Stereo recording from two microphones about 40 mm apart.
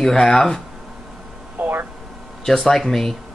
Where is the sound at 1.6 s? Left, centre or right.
Right.